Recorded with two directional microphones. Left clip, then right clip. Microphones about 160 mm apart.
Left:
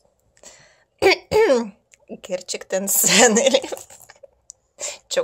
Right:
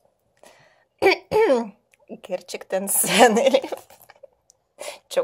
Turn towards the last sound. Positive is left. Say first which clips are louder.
# left 4 dB
turn(degrees=-10)  # may be behind; listen again after turning